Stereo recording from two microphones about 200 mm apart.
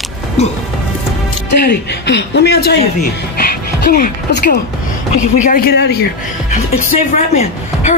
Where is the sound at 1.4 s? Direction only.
60° left (ahead or behind).